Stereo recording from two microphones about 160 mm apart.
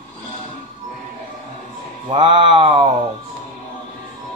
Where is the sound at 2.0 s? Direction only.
30° right (ahead or behind).